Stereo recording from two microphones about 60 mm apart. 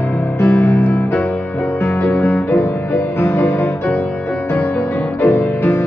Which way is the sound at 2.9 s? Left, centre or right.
Left.